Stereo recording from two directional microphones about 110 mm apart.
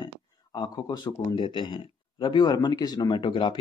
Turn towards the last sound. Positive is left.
turn(degrees=45)  # may be behind; listen again after turning